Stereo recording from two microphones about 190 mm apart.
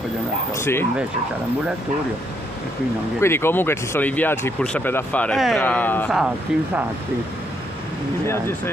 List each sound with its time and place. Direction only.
0.6 s speech: 15° left (ahead or behind)
3.2 s speech: 10° left (ahead or behind)
6.1 s speech: 5° right (ahead or behind)